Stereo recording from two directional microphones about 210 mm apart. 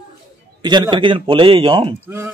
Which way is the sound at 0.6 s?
20° right (ahead or behind).